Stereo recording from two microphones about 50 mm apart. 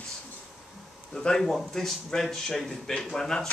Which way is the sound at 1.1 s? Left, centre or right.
Centre.